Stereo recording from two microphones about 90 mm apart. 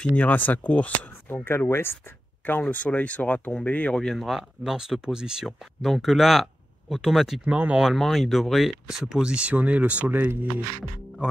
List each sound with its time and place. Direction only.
0.1 s speech: 20° left (ahead or behind); by 7.5 s 5° right (ahead or behind)
7.5 s speech: 15° right (ahead or behind)
7.8 s speech: centre (ahead or behind); by 10.5 s 20° right (ahead or behind)